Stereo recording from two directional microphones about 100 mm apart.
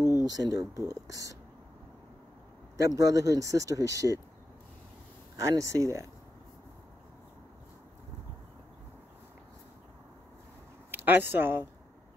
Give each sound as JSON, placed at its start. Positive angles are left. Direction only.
{"t": 0.0, "sound": "a sound", "side_deg": 35}
{"t": 0.4, "sound": "speech", "side_deg": -35}
{"t": 3.0, "sound": "speech", "side_deg": -35}
{"t": 5.4, "sound": "speech", "side_deg": -35}
{"t": 10.9, "sound": "speech", "side_deg": -20}